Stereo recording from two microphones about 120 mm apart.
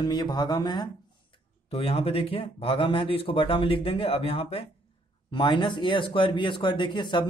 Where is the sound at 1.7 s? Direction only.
55° left (ahead or behind).